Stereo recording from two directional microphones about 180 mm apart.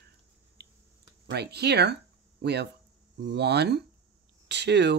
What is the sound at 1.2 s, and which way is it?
Speech, 65° right (ahead or behind).